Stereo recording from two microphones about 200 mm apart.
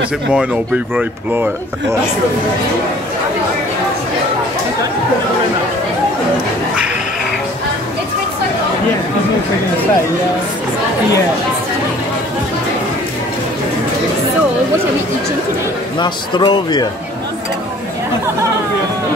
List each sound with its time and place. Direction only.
0.9 s speech: 10° right (ahead or behind)
16.0 s speech: 20° left (ahead or behind)